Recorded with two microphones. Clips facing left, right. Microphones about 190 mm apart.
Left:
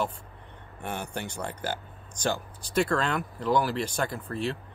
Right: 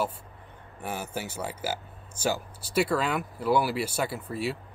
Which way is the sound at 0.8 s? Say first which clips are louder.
Even; 5° right (ahead or behind).